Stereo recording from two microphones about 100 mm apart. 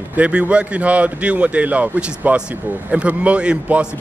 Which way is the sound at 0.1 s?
10° right (ahead or behind).